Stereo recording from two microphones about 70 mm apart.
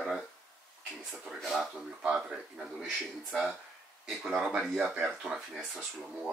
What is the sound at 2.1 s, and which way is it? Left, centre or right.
Speech, centre.